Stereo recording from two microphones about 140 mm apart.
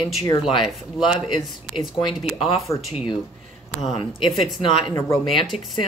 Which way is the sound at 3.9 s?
35° left (ahead or behind).